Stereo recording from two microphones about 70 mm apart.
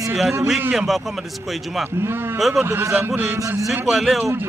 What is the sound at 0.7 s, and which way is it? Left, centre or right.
Speech, centre.